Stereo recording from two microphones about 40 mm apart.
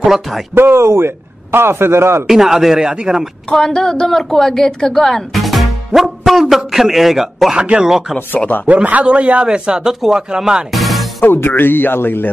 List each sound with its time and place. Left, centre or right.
0.0 s speech: centre
0.6 s a man's voice: right
2.2 s speech: centre
2.8 s a man's voice: right
3.5 s speech: centre
4.2 s a man's voice: centre
9.0 s a man's voice: right
9.5 s speech: centre
10.7 s music: centre
11.2 s speech: left